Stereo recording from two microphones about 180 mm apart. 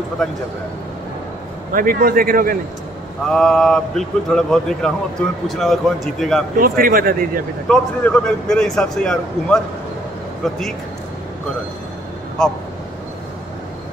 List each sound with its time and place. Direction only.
1.7 s a man's voice: 50° right (ahead or behind)
3.3 s a man's voice: 5° left (ahead or behind)
6.6 s a man's voice: 50° right (ahead or behind)
7.6 s a man's voice: 5° left (ahead or behind)
12.4 s a man's voice: centre (ahead or behind)